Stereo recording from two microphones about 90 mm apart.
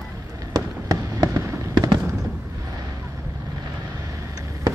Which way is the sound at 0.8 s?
40° right (ahead or behind).